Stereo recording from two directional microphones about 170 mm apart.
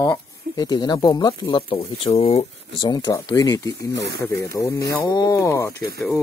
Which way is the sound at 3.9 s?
85° right.